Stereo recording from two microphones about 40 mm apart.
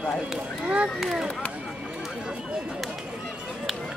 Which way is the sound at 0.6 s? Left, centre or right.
Right.